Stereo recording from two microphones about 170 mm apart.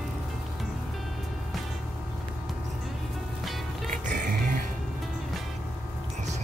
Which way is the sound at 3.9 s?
50° right (ahead or behind).